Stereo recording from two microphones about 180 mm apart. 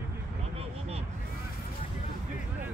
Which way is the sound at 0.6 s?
35° right (ahead or behind).